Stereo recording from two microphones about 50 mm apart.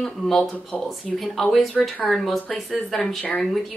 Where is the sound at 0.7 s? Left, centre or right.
Centre.